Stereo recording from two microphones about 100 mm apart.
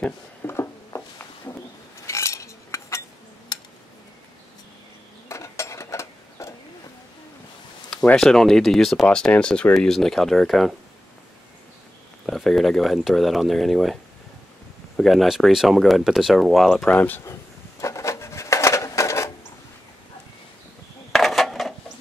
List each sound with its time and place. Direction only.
0.4 s a sound: 25° left (ahead or behind)
2.0 s cutlery: 30° left (ahead or behind)
3.5 s tick: 45° left (ahead or behind)
5.3 s mechanisms: 30° left (ahead or behind)
8.2 s speech: 5° left (ahead or behind)
12.3 s speech: centre (ahead or behind)
15.0 s speech: centre (ahead or behind)
16.9 s speech: 20° left (ahead or behind)
17.2 s a sound: 30° left (ahead or behind)
21.1 s a sound: centre (ahead or behind)